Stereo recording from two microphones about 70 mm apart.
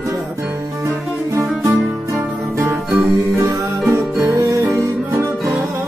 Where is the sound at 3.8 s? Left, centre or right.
Right.